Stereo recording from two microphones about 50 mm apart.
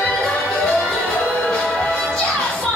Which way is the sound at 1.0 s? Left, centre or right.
Left.